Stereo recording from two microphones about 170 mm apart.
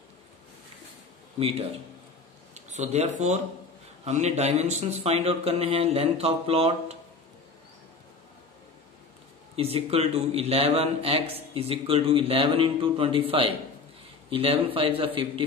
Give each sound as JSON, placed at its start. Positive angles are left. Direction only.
{"t": 2.5, "sound": "speech", "side_deg": -45}
{"t": 9.6, "sound": "speech", "side_deg": -35}